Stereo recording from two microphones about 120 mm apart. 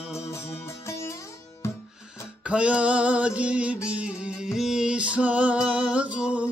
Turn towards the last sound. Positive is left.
turn(degrees=-10)  # may be behind; listen again after turning